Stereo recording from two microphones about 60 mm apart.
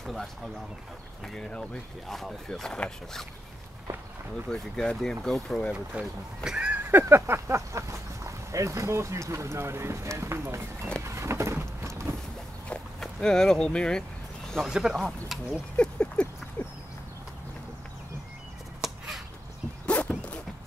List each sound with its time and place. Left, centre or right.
0.0 s speech: centre
2.0 s speech: centre
4.5 s speech: centre
5.7 s speech: centre
6.9 s speech: right
11.1 s a sound: right
13.0 s speech: centre
14.7 s speech: centre
15.8 s rodents: centre
16.6 s a sound: left
18.8 s a sound: centre
19.9 s dog: left